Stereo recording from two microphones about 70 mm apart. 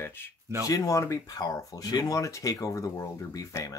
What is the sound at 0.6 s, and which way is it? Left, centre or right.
Speech, left.